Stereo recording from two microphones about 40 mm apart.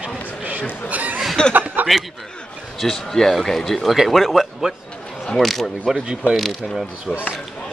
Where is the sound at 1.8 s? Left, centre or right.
Right.